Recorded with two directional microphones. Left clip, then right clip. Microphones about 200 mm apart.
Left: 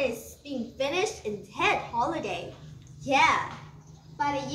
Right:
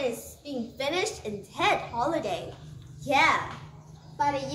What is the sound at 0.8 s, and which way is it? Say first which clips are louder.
A child's voice: left 1 dB; 20° right (ahead or behind).